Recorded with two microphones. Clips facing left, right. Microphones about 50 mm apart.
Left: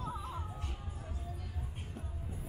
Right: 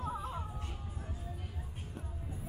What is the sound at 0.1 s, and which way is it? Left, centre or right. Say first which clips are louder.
Music: right 2 dB; right.